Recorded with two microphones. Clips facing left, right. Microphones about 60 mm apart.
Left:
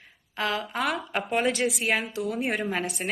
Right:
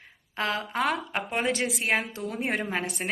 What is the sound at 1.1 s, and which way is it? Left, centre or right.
A woman's voice, right.